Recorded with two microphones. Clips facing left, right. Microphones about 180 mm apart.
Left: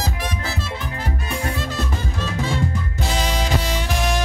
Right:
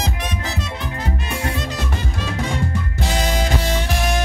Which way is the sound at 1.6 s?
20° right (ahead or behind).